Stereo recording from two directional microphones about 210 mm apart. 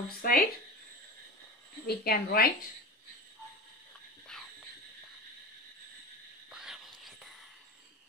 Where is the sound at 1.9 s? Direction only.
45° left (ahead or behind).